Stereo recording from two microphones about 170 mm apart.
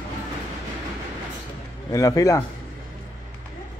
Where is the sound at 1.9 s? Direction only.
20° left (ahead or behind).